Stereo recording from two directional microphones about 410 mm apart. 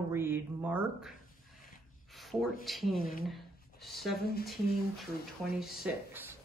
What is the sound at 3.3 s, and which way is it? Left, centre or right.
Speech, centre.